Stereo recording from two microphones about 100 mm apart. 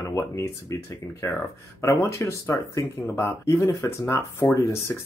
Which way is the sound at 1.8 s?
30° left (ahead or behind).